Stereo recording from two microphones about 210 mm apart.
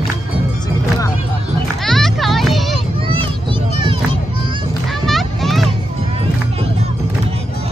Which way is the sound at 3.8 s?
25° right (ahead or behind).